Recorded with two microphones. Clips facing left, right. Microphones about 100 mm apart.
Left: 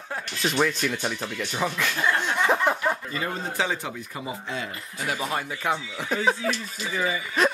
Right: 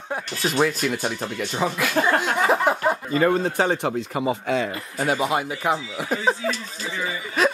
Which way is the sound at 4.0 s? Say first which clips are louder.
Right 10 dB; 65° right (ahead or behind).